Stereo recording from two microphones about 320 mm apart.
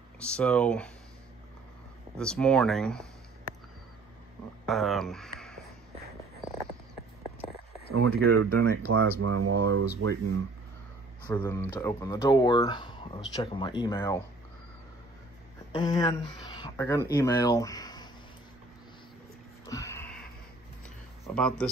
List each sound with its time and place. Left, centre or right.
0.2 s speech: centre
2.1 s speech: centre
4.6 s speech: centre
7.9 s speech: right
11.2 s speech: centre
15.7 s speech: centre
19.7 s a sound: centre
21.3 s speech: centre